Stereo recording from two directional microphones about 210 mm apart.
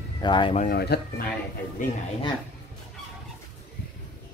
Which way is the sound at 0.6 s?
45° left (ahead or behind).